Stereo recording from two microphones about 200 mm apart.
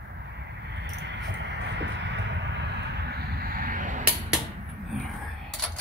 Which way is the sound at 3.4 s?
45° right (ahead or behind).